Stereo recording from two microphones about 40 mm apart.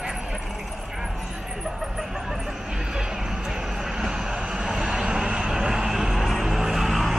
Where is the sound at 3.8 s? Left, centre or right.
Centre.